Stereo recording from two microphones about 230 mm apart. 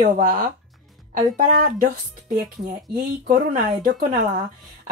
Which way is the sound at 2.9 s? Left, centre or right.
Right.